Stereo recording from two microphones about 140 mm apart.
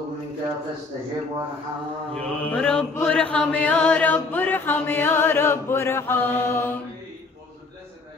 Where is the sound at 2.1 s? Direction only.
10° left (ahead or behind).